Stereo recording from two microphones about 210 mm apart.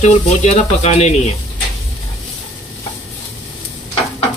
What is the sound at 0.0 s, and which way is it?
Speech, 30° left (ahead or behind).